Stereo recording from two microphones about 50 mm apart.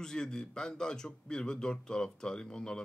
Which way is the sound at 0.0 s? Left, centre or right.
Centre.